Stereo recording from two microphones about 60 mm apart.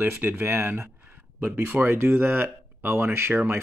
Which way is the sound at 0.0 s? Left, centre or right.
Right.